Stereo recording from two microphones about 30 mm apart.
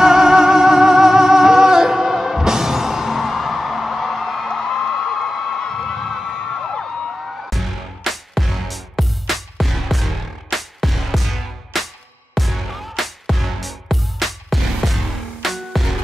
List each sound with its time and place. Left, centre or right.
0.0 s music: right; by 4.9 s centre
5.3 s crowd: centre
5.6 s crowd: centre
7.1 s music: centre